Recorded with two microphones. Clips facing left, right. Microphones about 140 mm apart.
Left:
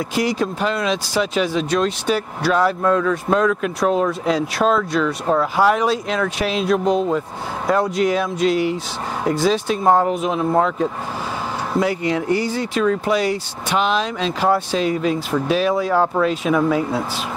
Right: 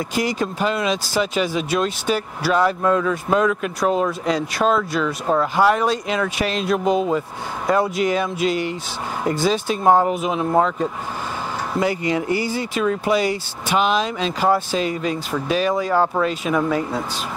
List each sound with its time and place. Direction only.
0.1 s speech: centre (ahead or behind)